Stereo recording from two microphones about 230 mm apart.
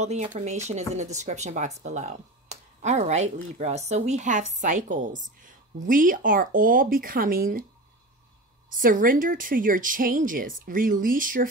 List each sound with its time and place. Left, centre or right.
0.0 s speech: right
8.6 s speech: right